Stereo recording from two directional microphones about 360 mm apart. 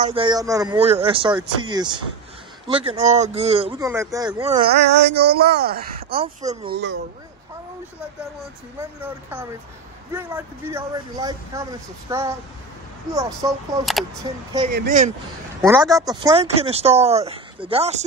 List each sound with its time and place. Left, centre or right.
0.0 s speech: centre
6.0 s speech: centre
10.1 s speech: centre
13.4 s speech: centre
14.7 s speech: right
15.6 s speech: centre